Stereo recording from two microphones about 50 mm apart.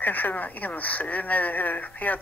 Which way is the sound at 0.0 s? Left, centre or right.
Left.